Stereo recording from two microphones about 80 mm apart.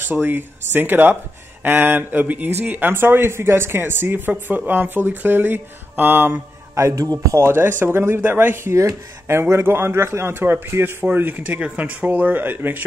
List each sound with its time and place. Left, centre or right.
0.0 s speech: right
7.0 s speech: right
7.3 s speech: right
8.7 s a man's voice: right